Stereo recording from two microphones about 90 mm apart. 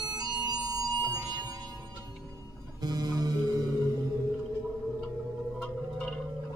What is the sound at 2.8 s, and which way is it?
Music, 45° right (ahead or behind).